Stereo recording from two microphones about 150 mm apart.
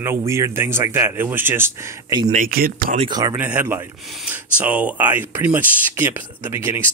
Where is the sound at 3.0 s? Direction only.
25° right (ahead or behind).